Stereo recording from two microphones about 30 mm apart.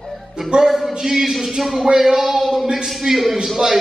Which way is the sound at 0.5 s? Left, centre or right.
Centre.